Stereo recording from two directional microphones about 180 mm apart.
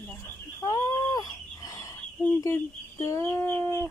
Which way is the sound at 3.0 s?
15° left (ahead or behind).